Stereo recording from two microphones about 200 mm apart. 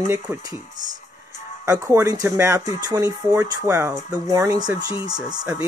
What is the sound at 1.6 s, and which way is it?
Speech, 15° right (ahead or behind).